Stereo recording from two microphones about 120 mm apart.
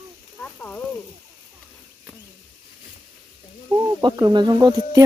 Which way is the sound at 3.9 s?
35° right (ahead or behind).